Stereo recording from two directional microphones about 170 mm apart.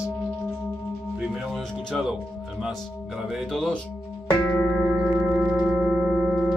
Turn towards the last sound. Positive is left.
turn(degrees=0)  # may be behind; listen again after turning